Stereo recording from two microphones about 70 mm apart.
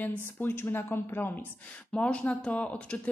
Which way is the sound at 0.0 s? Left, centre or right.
Left.